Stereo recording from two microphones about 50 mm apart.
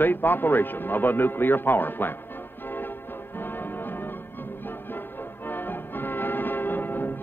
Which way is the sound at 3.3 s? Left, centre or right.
Left.